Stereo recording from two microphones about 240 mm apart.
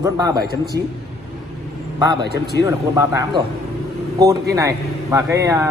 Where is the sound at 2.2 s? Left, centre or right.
Right.